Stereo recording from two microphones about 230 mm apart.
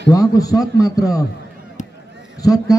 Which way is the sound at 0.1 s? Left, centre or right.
Centre.